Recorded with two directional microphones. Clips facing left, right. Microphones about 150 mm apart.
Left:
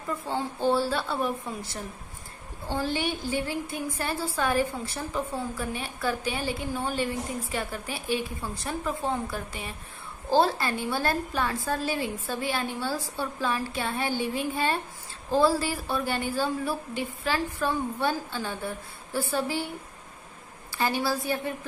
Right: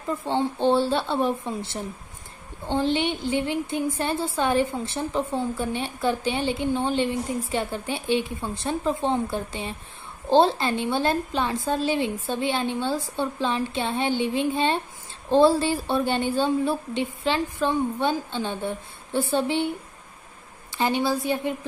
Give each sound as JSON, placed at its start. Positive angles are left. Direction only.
{"t": 0.2, "sound": "a woman's voice", "side_deg": -25}
{"t": 20.7, "sound": "a woman's voice", "side_deg": -20}